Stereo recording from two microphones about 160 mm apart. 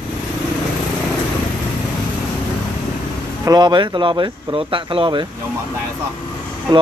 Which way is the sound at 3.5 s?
30° right (ahead or behind).